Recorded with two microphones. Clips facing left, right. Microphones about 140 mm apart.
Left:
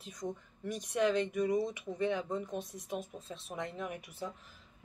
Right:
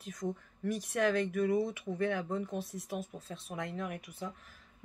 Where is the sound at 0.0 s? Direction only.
20° left (ahead or behind).